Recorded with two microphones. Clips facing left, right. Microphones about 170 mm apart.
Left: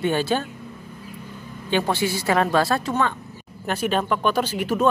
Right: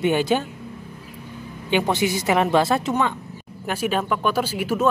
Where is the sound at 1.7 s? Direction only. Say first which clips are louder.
Right 1 dB; 15° right (ahead or behind).